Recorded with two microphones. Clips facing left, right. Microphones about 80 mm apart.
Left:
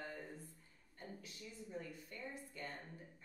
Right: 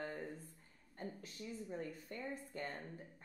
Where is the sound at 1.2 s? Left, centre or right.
Right.